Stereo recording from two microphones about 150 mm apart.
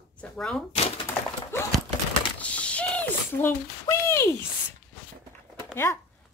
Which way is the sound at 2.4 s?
10° left (ahead or behind).